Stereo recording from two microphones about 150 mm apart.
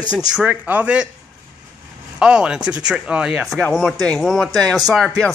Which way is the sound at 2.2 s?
5° right (ahead or behind).